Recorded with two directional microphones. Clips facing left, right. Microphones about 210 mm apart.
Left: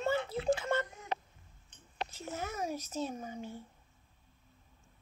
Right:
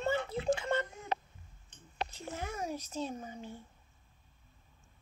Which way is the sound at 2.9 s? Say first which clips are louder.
Left 1 dB; 10° left (ahead or behind).